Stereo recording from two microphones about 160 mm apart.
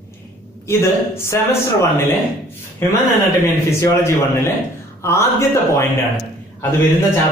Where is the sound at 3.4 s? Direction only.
15° left (ahead or behind).